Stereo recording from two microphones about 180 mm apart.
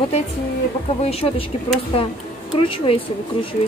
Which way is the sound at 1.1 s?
35° left (ahead or behind).